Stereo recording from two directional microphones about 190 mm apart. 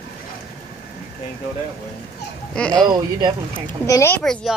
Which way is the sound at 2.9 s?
20° right (ahead or behind).